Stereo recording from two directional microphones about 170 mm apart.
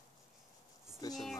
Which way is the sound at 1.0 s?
20° left (ahead or behind).